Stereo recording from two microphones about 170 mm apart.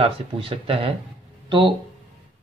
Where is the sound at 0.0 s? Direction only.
35° right (ahead or behind).